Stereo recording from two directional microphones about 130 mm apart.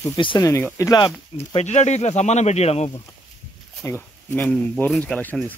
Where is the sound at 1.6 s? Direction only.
60° left (ahead or behind).